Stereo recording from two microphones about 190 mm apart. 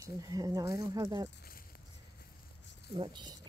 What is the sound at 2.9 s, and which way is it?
Speech, 25° right (ahead or behind).